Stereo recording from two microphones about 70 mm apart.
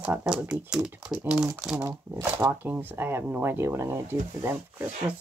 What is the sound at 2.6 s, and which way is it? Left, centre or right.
Speech, right.